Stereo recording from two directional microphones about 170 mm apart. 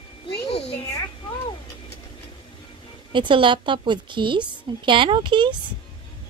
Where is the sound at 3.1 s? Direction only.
30° right (ahead or behind).